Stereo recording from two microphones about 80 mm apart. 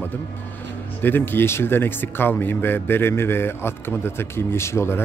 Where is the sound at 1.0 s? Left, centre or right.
Left.